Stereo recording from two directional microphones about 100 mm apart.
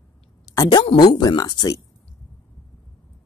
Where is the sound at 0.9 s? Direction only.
45° left (ahead or behind).